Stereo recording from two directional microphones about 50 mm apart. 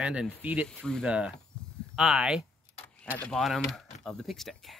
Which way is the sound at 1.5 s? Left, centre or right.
Left.